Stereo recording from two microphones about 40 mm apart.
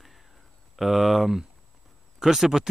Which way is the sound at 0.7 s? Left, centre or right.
Centre.